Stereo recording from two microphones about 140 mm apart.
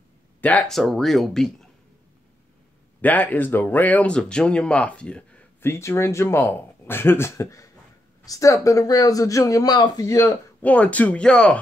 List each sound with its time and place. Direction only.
0.4 s speech: 10° left (ahead or behind)
3.0 s speech: 10° left (ahead or behind)
10.6 s speech: 10° left (ahead or behind)